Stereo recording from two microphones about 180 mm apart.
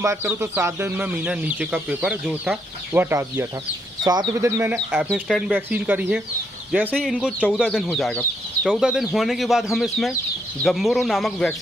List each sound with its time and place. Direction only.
0.0 s speech: 15° right (ahead or behind)
4.9 s speech: 5° right (ahead or behind)